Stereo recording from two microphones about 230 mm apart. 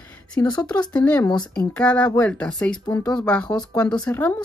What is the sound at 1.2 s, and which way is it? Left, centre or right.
Speech, centre.